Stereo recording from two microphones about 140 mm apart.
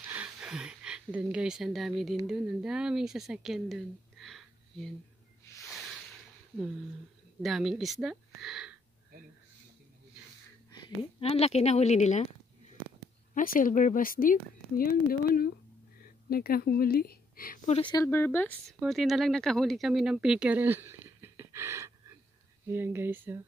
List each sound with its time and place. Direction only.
0.0 s speech: 10° right (ahead or behind)
7.4 s speech: centre (ahead or behind)
11.1 s speech: 45° left (ahead or behind)
13.3 s speech: 80° left
18.0 s speech: 15° left (ahead or behind)
18.7 s speech: centre (ahead or behind); by 23.4 s 15° right (ahead or behind)